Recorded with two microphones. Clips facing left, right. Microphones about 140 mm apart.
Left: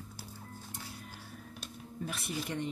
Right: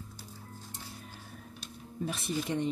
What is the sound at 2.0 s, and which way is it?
Speech, 25° right (ahead or behind).